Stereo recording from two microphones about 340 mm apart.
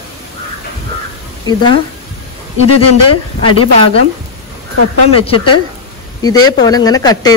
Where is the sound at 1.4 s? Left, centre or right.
Centre.